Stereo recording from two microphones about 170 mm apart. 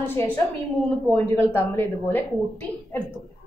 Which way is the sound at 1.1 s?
10° left (ahead or behind).